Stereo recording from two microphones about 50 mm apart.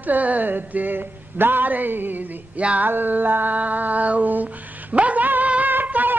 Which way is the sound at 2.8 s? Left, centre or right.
Right.